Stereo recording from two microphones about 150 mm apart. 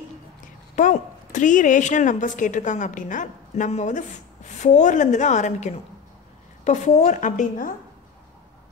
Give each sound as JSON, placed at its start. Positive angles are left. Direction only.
{"t": 0.7, "sound": "a woman's voice", "side_deg": 55}